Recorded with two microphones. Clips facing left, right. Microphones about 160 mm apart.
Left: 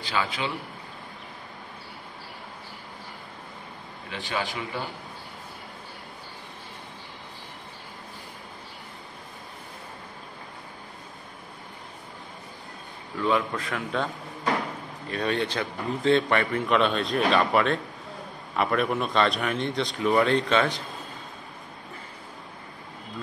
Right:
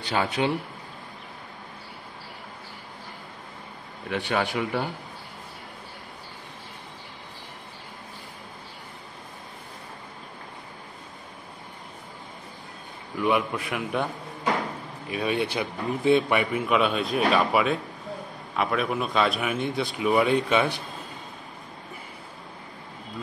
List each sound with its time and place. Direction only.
0.2 s a man's voice: 45° right (ahead or behind)
4.1 s a man's voice: 60° right (ahead or behind)
13.2 s a man's voice: 10° right (ahead or behind)